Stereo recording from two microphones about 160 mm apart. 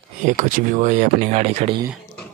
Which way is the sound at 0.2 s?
55° right (ahead or behind).